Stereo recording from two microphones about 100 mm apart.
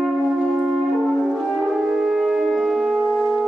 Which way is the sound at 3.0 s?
5° left (ahead or behind).